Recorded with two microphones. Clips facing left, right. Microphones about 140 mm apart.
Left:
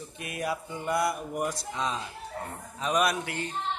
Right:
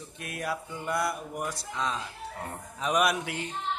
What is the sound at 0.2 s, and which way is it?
Mantra, 5° left (ahead or behind).